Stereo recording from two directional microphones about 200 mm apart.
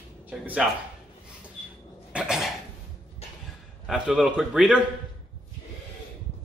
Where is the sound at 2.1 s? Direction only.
5° right (ahead or behind).